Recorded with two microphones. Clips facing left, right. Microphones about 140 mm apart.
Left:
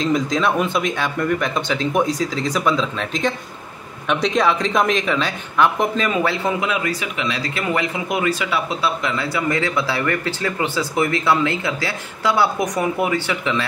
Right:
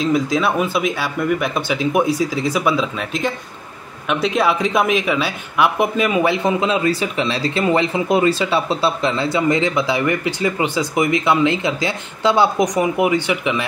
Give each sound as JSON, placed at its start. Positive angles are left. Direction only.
{"t": 0.0, "sound": "speech", "side_deg": -5}